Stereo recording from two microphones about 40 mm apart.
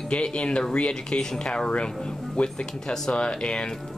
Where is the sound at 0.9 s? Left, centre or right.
Centre.